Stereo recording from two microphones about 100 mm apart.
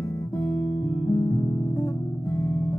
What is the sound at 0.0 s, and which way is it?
Guitar, 25° left (ahead or behind).